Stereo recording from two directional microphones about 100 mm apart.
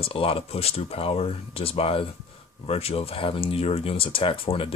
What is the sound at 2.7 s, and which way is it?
Speech, 85° left.